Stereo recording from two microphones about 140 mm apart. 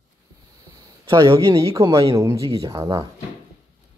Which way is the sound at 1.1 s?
30° right (ahead or behind).